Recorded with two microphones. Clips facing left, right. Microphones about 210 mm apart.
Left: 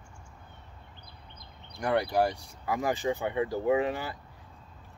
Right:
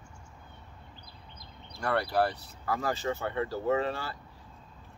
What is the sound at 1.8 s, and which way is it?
Speech, 15° left (ahead or behind).